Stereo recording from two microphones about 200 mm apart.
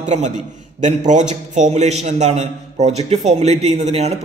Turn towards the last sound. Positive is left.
turn(degrees=-30)  # may be behind; listen again after turning